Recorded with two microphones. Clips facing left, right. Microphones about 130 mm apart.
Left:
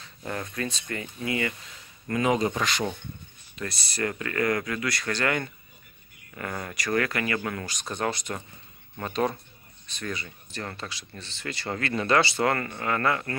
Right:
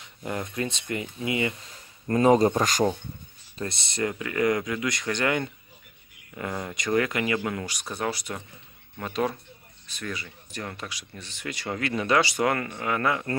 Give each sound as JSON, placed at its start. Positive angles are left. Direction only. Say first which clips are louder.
{"t": 0.0, "sound": "speech", "louder": "right 2 dB", "side_deg": -15}
{"t": 2.0, "sound": "speech", "louder": "right 5 dB", "side_deg": -35}
{"t": 3.5, "sound": "speech", "louder": "right 2 dB", "side_deg": -25}